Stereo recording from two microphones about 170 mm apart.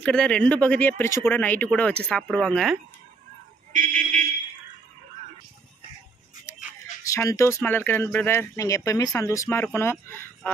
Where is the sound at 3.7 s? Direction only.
50° right (ahead or behind).